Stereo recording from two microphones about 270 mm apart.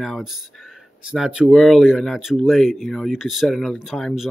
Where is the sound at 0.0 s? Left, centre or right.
Centre.